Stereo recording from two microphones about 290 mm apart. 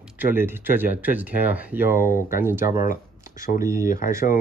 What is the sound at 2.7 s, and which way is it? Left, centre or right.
Shuffling cards, left.